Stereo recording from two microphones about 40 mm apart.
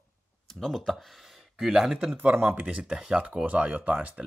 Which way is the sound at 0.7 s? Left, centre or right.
Centre.